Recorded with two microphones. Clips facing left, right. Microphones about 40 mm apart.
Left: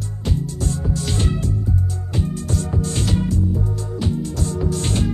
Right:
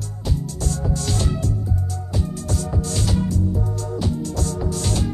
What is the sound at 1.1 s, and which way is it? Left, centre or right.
Music, left.